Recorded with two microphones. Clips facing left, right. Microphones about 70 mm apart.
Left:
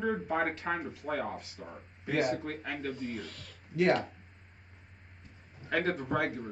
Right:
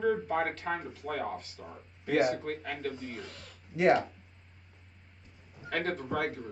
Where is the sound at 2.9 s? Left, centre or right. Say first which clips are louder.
Left 3 dB; right.